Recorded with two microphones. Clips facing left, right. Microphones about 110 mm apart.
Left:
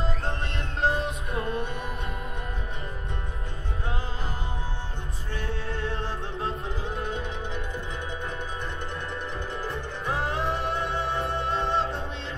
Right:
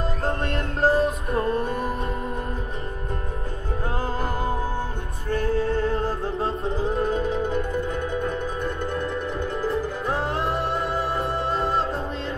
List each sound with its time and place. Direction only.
0.0 s music: 45° right (ahead or behind)
4.2 s music: 45° right (ahead or behind)
9.5 s music: centre (ahead or behind)
11.0 s music: 35° right (ahead or behind)